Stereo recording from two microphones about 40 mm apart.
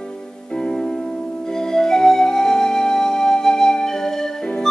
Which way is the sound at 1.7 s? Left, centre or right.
Centre.